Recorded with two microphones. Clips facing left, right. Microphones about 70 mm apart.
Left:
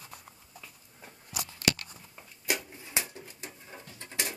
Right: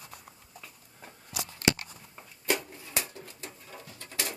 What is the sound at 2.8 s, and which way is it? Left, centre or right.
Pigeon, left.